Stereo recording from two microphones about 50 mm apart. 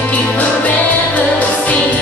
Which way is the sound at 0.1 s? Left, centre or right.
Left.